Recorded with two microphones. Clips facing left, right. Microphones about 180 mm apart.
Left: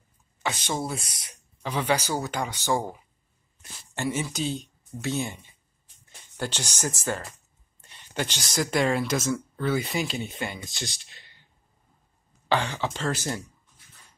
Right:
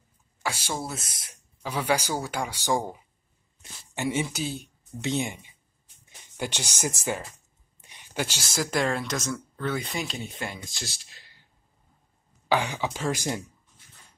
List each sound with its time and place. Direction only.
0.4 s speech: 5° right (ahead or behind)
4.2 s speech: 10° right (ahead or behind)
5.0 s speech: 20° right (ahead or behind)
6.0 s a sound: 15° right (ahead or behind)
6.8 s speech: 15° right (ahead or behind)
12.4 s speech: 10° right (ahead or behind)